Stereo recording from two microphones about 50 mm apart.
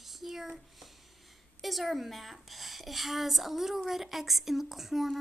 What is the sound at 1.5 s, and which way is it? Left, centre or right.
A woman's voice, centre.